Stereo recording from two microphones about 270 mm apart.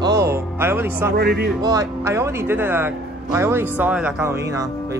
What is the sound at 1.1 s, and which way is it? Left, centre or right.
Music, right.